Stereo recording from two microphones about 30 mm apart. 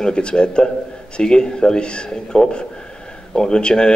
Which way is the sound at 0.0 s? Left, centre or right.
Left.